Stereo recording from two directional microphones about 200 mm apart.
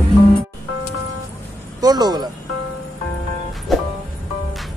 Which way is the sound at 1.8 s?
20° right (ahead or behind).